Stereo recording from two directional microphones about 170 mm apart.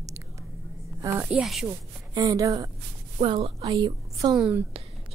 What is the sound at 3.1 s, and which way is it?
A woman's voice, 30° right (ahead or behind).